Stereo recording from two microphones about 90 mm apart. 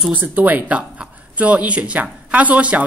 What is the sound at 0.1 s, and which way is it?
A man's voice, 20° right (ahead or behind).